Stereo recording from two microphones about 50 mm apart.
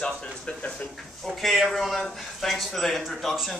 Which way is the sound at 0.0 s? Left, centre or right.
Left.